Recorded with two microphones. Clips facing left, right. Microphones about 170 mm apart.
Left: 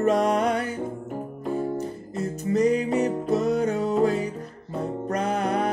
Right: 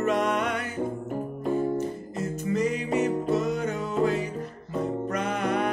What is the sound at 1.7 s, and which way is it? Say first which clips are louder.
Music: even; 35° left (ahead or behind).